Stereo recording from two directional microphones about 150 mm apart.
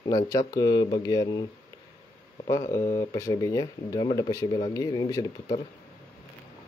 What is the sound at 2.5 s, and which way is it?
Speech, 20° left (ahead or behind).